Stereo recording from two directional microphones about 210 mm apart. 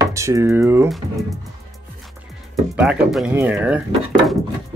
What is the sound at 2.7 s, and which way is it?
Speech, 5° right (ahead or behind).